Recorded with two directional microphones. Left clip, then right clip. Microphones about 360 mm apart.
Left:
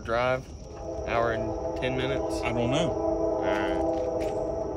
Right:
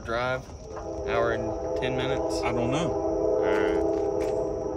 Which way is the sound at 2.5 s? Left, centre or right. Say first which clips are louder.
Even; centre.